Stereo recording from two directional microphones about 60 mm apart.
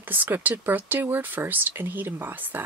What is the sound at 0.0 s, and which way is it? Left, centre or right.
Speech, right.